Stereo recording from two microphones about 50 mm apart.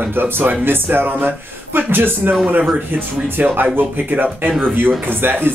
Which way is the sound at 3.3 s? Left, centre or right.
Right.